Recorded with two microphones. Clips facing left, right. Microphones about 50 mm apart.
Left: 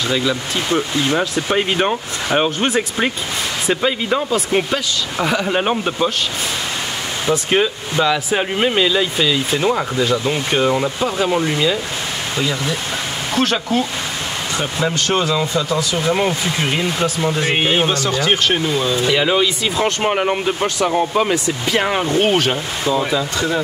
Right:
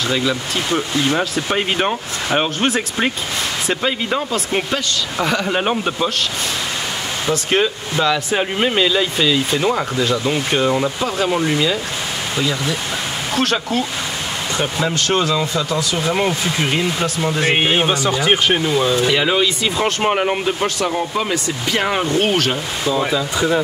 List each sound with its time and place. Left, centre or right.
0.1 s speech: centre
7.2 s speech: centre
21.2 s speech: centre
21.6 s speech: centre
23.3 s speech: centre